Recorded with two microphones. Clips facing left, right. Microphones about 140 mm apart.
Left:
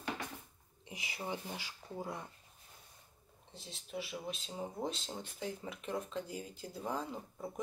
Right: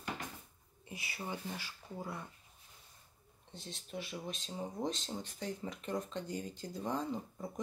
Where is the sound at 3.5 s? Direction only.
5° left (ahead or behind).